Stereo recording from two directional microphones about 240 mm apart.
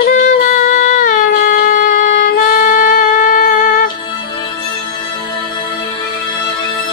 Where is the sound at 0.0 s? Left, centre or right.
Left.